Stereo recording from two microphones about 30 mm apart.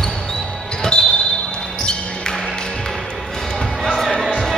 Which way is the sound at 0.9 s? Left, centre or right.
Left.